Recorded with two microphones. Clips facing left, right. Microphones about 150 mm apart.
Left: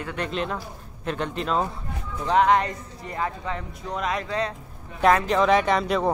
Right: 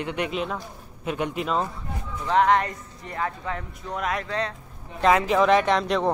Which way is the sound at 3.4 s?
5° right (ahead or behind).